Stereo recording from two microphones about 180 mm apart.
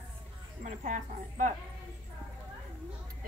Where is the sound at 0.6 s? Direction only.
45° right (ahead or behind).